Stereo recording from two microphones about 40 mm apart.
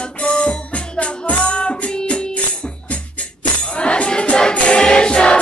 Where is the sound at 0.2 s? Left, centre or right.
Left.